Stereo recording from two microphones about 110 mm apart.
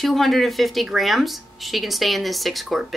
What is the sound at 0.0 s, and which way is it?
Speech, centre (ahead or behind).